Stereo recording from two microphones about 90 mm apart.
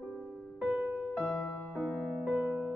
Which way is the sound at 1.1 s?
10° left (ahead or behind).